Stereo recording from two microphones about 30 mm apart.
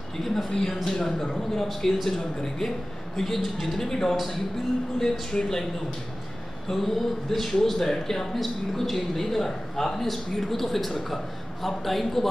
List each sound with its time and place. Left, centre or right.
0.2 s a man's voice: centre
0.5 s a man's voice: centre
5.3 s speech: centre
6.7 s a man's voice: centre